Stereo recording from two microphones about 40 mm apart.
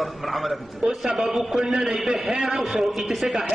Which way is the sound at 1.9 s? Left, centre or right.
Centre.